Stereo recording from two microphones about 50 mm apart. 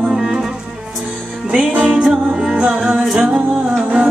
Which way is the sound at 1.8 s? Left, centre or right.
Right.